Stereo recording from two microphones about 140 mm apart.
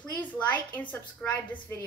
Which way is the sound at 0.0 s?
10° left (ahead or behind).